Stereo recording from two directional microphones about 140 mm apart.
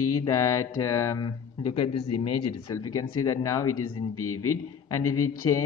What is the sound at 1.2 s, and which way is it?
Speech, 35° left (ahead or behind).